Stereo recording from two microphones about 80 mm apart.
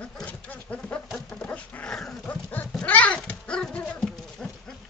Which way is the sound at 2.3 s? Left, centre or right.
Centre.